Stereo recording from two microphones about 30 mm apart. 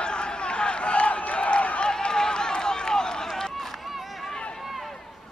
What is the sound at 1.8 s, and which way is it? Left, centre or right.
Run, left.